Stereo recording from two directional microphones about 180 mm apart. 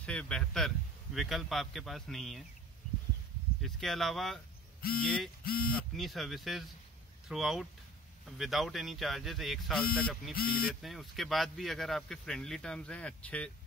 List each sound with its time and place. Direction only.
0.0 s speech: 5° left (ahead or behind)
3.6 s speech: centre (ahead or behind)
5.4 s speech: 55° left (ahead or behind)
5.7 s speech: 5° left (ahead or behind)